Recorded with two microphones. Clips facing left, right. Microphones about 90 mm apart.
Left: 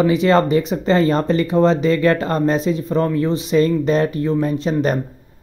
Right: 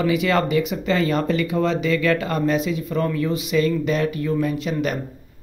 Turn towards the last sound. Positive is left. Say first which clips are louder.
# left 5 dB
turn(degrees=35)  # may be behind; listen again after turning